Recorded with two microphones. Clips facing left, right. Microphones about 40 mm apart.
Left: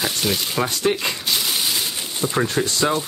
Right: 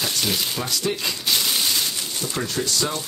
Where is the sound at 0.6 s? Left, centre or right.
Left.